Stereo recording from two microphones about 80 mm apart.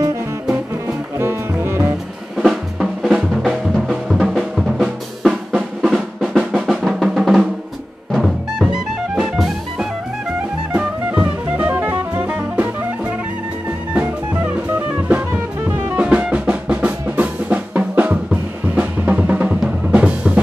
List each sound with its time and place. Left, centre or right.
1.1 s music: right
2.3 s drum: centre
8.1 s music: centre
10.7 s music: centre
15.0 s drum: centre